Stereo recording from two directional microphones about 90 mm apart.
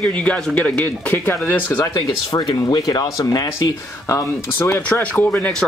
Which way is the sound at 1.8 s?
40° left (ahead or behind).